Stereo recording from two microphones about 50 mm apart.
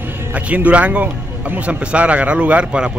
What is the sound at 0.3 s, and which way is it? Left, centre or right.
A man's voice, right.